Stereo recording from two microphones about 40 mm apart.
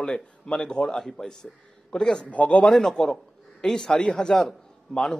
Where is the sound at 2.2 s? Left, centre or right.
Left.